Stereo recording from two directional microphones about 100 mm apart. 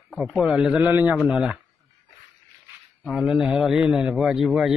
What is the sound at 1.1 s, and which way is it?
Speech, 10° right (ahead or behind).